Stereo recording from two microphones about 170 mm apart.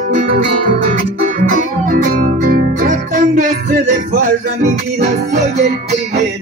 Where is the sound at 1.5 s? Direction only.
55° right (ahead or behind).